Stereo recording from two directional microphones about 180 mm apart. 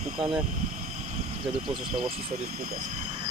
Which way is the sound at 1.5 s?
40° right (ahead or behind).